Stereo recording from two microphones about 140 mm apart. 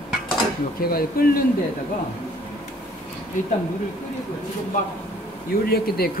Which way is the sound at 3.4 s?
65° left (ahead or behind).